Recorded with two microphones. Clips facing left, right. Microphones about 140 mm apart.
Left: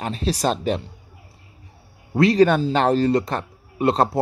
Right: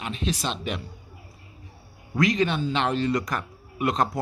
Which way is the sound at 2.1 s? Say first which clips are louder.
Left 8 dB; 35° left (ahead or behind).